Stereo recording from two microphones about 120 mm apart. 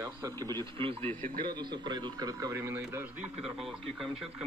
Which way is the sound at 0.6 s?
50° right (ahead or behind).